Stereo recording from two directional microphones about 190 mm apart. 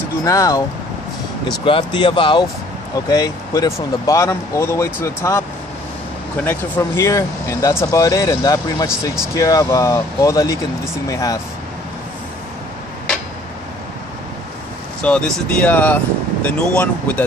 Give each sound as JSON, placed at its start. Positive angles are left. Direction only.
{"t": 0.2, "sound": "speech", "side_deg": 20}
{"t": 15.0, "sound": "speech", "side_deg": 5}